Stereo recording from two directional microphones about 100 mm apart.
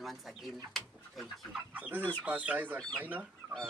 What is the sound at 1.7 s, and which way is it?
Speech, 15° right (ahead or behind).